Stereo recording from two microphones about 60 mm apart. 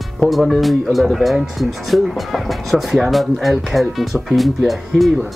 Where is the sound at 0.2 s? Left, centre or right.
Centre.